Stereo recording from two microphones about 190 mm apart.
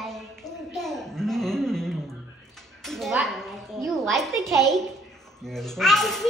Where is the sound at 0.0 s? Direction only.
Centre (ahead or behind).